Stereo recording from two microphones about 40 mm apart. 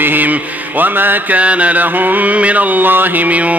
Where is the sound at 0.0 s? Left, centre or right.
Right.